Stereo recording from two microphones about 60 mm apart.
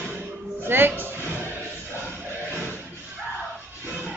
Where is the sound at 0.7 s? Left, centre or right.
Right.